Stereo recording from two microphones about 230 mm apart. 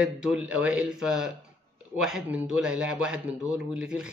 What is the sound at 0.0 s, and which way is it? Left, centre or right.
A man's voice, centre.